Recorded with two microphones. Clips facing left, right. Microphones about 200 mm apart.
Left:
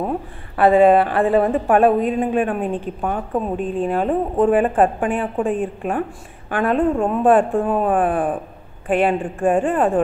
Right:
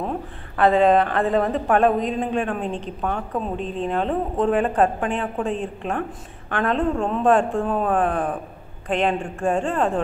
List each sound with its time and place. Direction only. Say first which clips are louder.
0.6 s a woman's voice: left 4 dB; 10° left (ahead or behind)
2.6 s a woman's voice: left 4 dB; 50° left (ahead or behind)
3.0 s a woman's voice: left 2 dB; 15° left (ahead or behind)
3.5 s a woman's voice: left 5 dB; 50° left (ahead or behind)
3.9 s a woman's voice: left 2 dB; 10° left (ahead or behind)
7.0 s a woman's voice: left 2 dB; 15° left (ahead or behind)